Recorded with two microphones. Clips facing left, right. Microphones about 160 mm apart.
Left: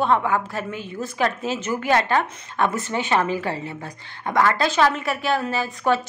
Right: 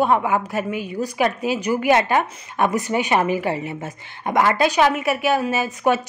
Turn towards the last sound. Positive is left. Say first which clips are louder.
# right 2 dB
turn(degrees=-15)  # may be behind; listen again after turning